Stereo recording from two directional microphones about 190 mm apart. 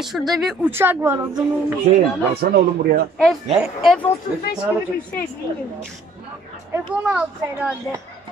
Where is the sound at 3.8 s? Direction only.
Centre (ahead or behind).